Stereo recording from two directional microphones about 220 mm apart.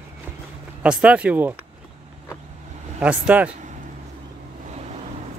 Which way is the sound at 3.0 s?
5° right (ahead or behind).